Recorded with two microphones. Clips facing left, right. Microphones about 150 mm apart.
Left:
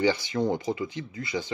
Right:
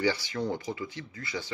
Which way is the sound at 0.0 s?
20° left (ahead or behind).